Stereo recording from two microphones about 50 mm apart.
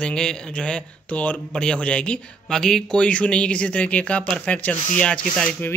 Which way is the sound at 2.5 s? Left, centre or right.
Centre.